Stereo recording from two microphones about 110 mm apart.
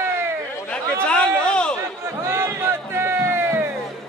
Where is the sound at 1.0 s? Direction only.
10° left (ahead or behind).